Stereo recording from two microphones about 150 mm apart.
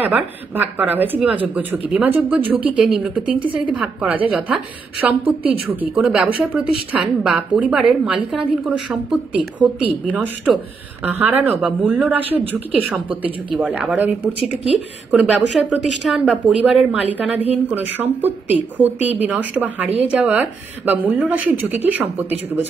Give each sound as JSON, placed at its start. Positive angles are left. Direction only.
{"t": 0.0, "sound": "a woman's voice", "side_deg": -10}
{"t": 3.3, "sound": "a woman's voice", "side_deg": -35}
{"t": 3.7, "sound": "a woman's voice", "side_deg": -10}
{"t": 11.1, "sound": "a woman's voice", "side_deg": -10}